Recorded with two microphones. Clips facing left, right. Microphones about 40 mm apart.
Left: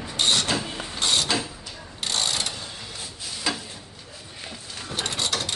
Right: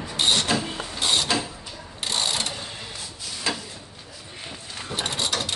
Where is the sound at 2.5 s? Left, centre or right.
Right.